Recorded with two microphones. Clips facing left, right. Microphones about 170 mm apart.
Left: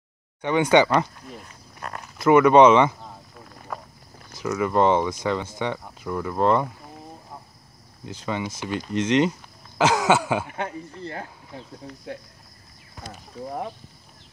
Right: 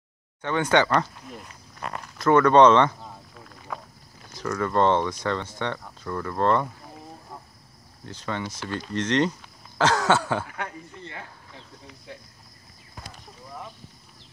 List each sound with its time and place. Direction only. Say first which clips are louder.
0.4 s speech: left 4 dB; 15° left (ahead or behind)
2.1 s a sound: left 2 dB; 10° left (ahead or behind)
4.4 s speech: left 2 dB; 10° left (ahead or behind)
8.0 s speech: left 3 dB; 10° left (ahead or behind)
10.5 s a man's voice: left 5 dB; 25° left (ahead or behind)
11.1 s speech: left 6 dB; 40° left (ahead or behind)
12.1 s speech: left 7 dB; 55° left (ahead or behind)